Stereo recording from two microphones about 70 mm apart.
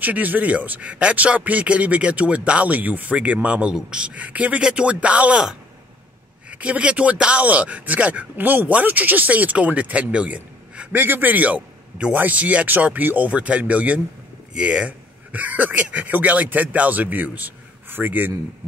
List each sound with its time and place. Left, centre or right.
0.0 s speech: right
6.5 s speech: centre